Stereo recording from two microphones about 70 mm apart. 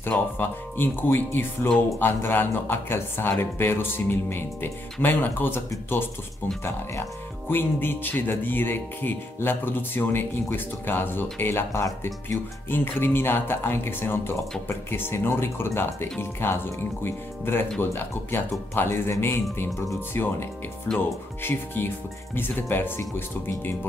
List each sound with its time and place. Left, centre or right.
0.1 s speech: left
6.6 s speech: left
21.4 s speech: left